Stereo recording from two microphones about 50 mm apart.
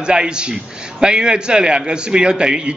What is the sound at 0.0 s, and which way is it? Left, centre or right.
A man's voice, centre.